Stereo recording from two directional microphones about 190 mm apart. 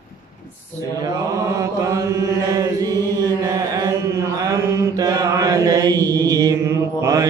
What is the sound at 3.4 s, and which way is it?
Mantra, 20° right (ahead or behind).